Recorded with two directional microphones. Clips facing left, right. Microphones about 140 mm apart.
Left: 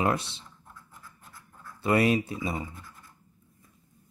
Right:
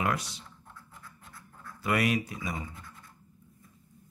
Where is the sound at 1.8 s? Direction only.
30° left (ahead or behind).